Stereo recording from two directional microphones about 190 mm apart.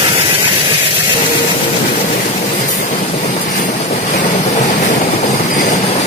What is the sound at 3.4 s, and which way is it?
Vehicle, 40° left (ahead or behind).